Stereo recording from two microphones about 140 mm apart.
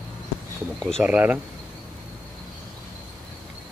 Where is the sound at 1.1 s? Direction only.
10° right (ahead or behind).